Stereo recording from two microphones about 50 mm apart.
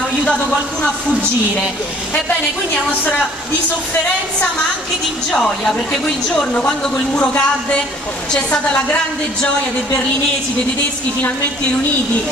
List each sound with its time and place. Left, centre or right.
5.3 s speech: centre